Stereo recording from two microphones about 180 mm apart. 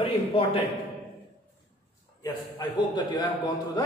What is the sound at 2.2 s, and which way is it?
A man's voice, 20° left (ahead or behind).